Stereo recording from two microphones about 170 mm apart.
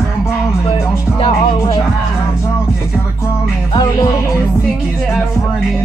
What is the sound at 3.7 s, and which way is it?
Music, 30° left (ahead or behind).